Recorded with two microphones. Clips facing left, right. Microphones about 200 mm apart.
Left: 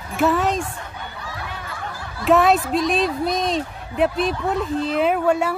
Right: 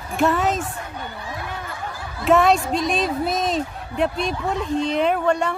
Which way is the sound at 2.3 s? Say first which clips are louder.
Even; centre (ahead or behind).